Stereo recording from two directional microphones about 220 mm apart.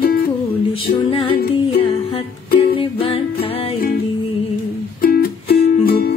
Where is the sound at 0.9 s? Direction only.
20° left (ahead or behind).